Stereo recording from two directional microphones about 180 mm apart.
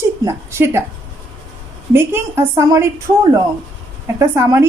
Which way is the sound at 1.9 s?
10° right (ahead or behind).